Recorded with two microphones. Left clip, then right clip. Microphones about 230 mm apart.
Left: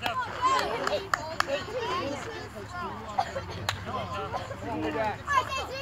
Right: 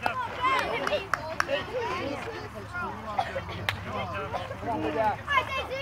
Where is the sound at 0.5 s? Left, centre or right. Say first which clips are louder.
Even; right.